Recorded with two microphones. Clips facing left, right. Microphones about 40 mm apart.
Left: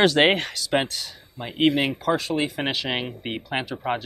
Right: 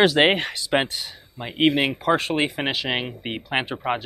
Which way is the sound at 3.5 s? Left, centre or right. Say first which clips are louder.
Right 4 dB; right.